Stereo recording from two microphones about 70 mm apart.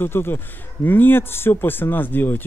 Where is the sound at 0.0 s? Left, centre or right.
Left.